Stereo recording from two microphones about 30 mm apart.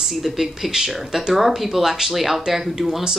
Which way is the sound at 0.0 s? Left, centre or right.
Centre.